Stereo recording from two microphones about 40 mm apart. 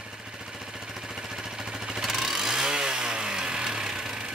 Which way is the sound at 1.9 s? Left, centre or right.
Centre.